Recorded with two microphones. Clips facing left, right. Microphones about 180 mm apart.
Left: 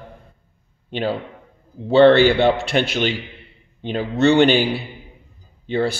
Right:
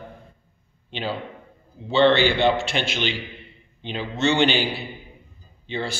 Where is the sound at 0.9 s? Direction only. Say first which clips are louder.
Left 6 dB; 50° left (ahead or behind).